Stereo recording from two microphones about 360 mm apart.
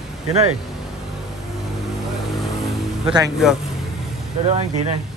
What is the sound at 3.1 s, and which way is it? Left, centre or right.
Speech, centre.